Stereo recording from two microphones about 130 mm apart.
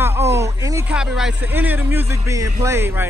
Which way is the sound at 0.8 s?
5° right (ahead or behind).